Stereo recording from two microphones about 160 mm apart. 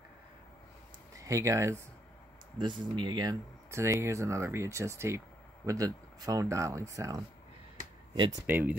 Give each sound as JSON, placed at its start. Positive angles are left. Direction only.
{"t": 1.1, "sound": "a man's voice", "side_deg": -20}